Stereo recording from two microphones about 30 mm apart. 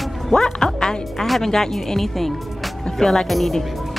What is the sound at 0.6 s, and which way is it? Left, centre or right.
Music, left.